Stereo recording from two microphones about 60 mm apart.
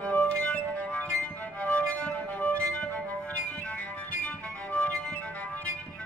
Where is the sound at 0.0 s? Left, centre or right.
Left.